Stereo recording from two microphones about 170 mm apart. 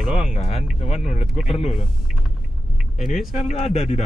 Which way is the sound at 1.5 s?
35° left (ahead or behind).